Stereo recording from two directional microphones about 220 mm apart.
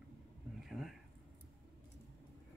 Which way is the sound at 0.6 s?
Centre (ahead or behind).